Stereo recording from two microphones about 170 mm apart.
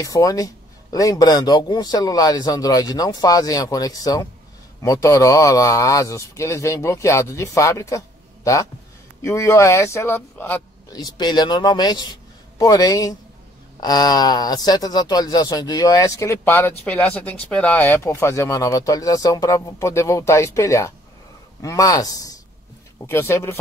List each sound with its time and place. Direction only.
0.0 s speech: 20° left (ahead or behind)
9.2 s speech: 20° left (ahead or behind)
10.9 s a man's voice: 25° left (ahead or behind)